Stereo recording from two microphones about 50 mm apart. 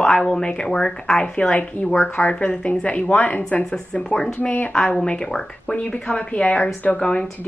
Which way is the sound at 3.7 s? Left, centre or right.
Centre.